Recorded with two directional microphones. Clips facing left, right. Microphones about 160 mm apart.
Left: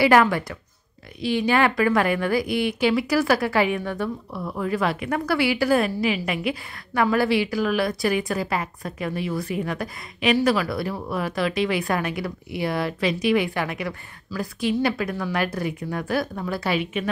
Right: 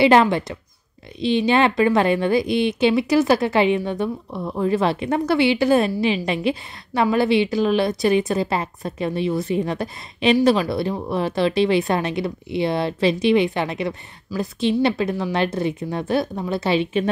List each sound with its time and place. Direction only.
0.0 s a woman's voice: 25° right (ahead or behind)